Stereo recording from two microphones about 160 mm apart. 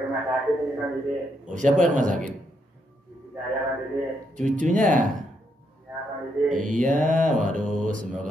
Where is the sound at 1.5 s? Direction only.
50° right (ahead or behind).